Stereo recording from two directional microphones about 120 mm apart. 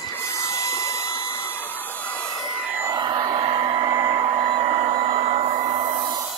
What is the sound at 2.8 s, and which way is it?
Hair dryer, 35° right (ahead or behind).